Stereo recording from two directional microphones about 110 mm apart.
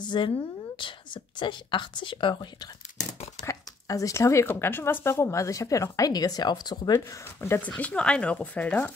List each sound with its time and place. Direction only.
0.0 s a woman's voice: 45° left (ahead or behind)
7.3 s speech: 20° left (ahead or behind)